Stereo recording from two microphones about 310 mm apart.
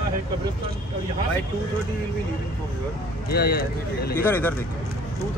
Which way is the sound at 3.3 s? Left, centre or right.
Left.